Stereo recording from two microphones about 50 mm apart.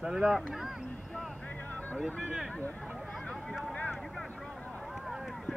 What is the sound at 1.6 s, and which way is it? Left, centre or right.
Music, left.